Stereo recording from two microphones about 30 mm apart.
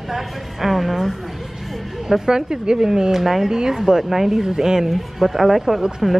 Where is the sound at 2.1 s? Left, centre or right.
Centre.